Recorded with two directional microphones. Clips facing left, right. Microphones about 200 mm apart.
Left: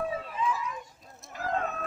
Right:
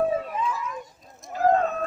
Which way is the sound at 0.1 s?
50° right (ahead or behind).